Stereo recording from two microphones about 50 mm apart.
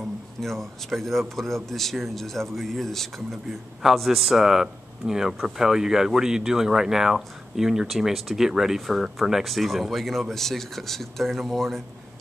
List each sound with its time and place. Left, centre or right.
0.4 s a man's voice: centre